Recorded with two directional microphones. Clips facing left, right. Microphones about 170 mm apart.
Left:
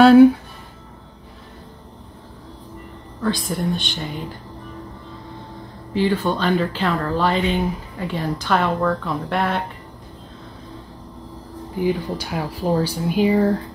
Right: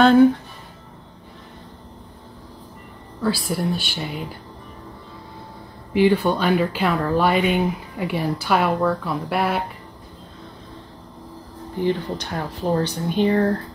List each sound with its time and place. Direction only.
0.0 s speech: 10° left (ahead or behind)
3.2 s speech: 5° right (ahead or behind)
5.9 s speech: 10° right (ahead or behind)
11.7 s speech: 10° left (ahead or behind)